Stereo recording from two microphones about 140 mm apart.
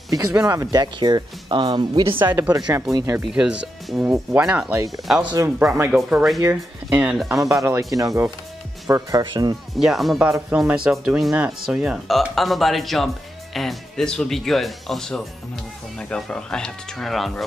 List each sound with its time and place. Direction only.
0.1 s speech: 25° right (ahead or behind)
3.2 s speech: 5° right (ahead or behind)
4.7 s speech: 25° right (ahead or behind)
5.6 s speech: 15° right (ahead or behind)
6.4 s speech: 15° right (ahead or behind)
7.9 s speech: 25° right (ahead or behind)
9.2 s speech: 35° right (ahead or behind)
9.8 s speech: centre (ahead or behind)